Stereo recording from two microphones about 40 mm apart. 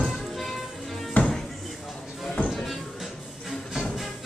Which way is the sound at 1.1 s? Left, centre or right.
Left.